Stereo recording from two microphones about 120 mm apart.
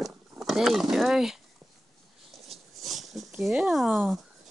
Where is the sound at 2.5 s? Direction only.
Centre (ahead or behind).